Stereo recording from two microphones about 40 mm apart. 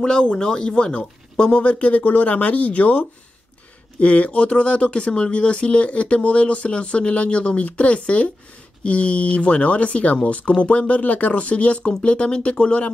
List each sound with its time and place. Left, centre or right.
0.0 s speech: centre